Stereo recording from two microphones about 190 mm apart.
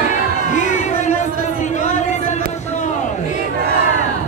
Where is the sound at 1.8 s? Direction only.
40° left (ahead or behind).